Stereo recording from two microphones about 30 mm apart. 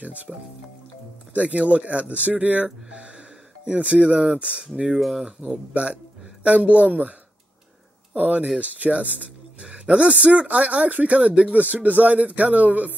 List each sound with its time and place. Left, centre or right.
0.0 s speech: right
2.9 s a sound: right
3.7 s speech: right
6.4 s speech: right
9.6 s speech: right
10.1 s speech: right
11.6 s speech: right